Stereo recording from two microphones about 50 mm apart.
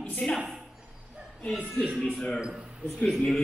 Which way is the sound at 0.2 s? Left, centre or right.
Centre.